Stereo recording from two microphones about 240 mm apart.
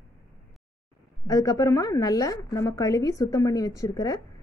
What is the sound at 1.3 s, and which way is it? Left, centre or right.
A woman's voice, centre.